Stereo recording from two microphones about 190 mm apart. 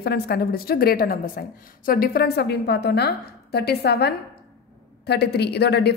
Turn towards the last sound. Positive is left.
turn(degrees=60)  # may be behind; listen again after turning